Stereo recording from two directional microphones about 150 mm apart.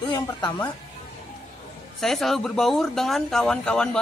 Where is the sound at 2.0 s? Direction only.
Centre (ahead or behind).